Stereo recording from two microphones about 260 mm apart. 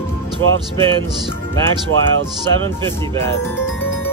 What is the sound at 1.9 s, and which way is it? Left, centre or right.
Speech, right.